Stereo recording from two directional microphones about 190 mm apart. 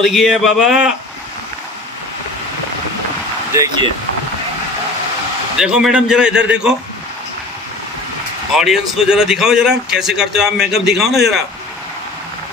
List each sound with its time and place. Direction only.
0.0 s speech: centre (ahead or behind)
3.5 s speech: 20° right (ahead or behind)
5.6 s speech: 5° right (ahead or behind)
8.5 s speech: centre (ahead or behind)